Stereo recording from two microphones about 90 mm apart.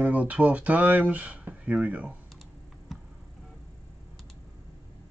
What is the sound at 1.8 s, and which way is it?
Speech, 15° right (ahead or behind).